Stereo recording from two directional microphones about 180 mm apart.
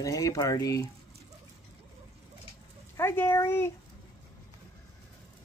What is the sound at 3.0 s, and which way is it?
Speech, 15° left (ahead or behind).